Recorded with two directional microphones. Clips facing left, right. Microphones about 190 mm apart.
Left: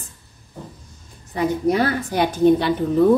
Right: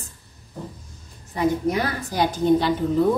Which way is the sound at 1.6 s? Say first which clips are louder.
Left 5 dB; 60° left (ahead or behind).